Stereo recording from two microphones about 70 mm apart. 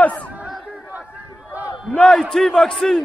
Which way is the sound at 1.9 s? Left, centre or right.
Centre.